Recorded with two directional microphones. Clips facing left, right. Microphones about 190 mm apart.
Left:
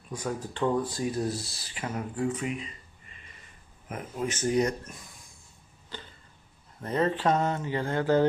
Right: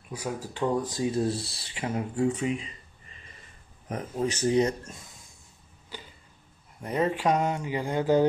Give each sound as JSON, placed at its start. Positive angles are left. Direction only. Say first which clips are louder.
{"t": 0.1, "sound": "speech", "louder": "even", "side_deg": -10}
{"t": 5.9, "sound": "a sound", "louder": "even", "side_deg": -10}
{"t": 6.8, "sound": "speech", "louder": "even", "side_deg": -15}